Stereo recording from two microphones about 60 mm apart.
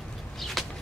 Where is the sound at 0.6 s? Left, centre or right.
Centre.